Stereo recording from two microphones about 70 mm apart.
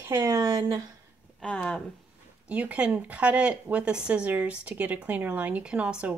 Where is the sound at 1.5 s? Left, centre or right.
Left.